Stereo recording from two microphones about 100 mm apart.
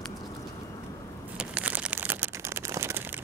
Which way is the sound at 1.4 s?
15° right (ahead or behind).